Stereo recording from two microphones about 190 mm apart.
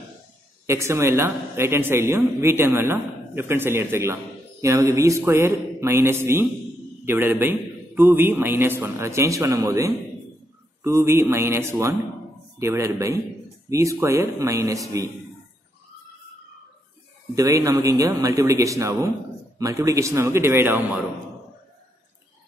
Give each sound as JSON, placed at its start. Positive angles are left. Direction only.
{"t": 0.7, "sound": "a woman's voice", "side_deg": -15}
{"t": 17.4, "sound": "a woman's voice", "side_deg": -15}